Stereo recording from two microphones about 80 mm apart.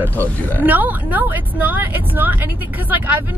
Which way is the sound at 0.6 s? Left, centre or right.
Right.